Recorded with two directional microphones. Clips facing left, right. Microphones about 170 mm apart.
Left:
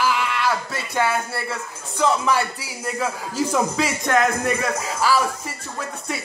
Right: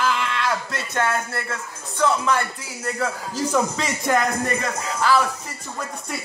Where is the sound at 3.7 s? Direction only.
Centre (ahead or behind).